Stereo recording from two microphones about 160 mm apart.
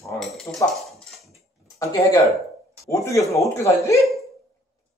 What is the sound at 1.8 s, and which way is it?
Speech, 20° left (ahead or behind).